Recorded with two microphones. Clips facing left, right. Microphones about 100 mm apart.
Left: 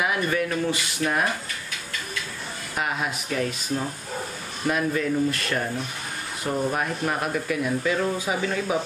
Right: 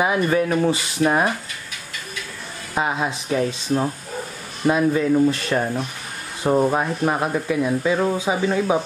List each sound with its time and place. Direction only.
0.0 s speech: 25° right (ahead or behind)
2.7 s speech: 30° right (ahead or behind)